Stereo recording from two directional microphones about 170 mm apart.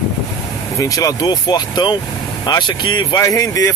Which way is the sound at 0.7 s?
20° left (ahead or behind).